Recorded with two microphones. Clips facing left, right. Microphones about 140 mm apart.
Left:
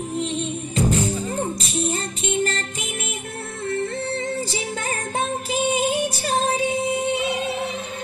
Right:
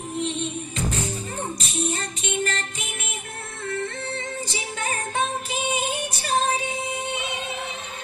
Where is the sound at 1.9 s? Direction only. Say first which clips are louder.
Left 4 dB; 40° left (ahead or behind).